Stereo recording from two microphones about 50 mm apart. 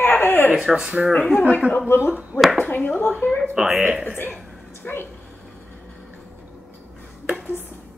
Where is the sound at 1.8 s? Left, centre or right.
Left.